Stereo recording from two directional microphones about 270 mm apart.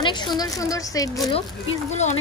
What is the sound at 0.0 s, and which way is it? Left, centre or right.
Speech, centre.